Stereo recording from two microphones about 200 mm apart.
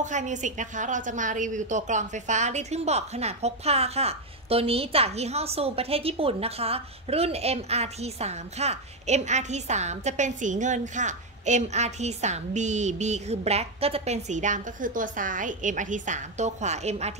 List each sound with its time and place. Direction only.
0.0 s a woman's voice: 40° right (ahead or behind)